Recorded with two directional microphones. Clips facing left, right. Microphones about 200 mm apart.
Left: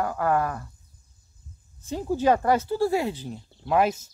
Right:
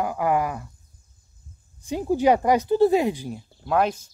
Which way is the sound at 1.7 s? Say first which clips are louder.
Right 4 dB; 15° right (ahead or behind).